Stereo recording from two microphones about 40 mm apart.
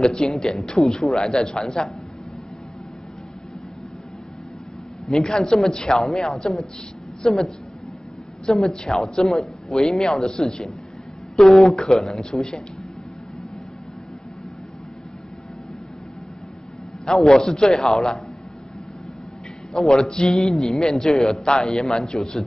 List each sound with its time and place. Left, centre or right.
0.0 s a woman's voice: centre
5.0 s a woman's voice: centre
17.0 s a woman's voice: centre
19.7 s a woman's voice: centre